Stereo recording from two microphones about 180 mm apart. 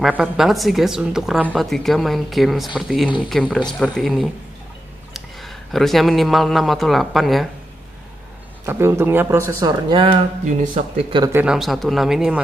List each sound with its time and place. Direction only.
0.0 s a woman's voice: 5° right (ahead or behind)
8.6 s speech: 15° right (ahead or behind)
11.3 s a woman's voice: 5° right (ahead or behind)